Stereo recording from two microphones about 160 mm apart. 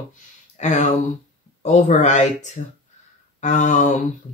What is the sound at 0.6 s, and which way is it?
Speech, 50° left (ahead or behind).